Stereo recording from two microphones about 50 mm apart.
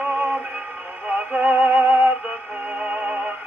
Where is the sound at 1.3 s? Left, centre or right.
Right.